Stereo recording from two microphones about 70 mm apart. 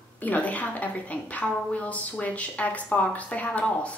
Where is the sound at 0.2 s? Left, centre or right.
Left.